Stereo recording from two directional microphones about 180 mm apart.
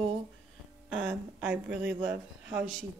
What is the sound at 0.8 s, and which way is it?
Speech, 5° right (ahead or behind).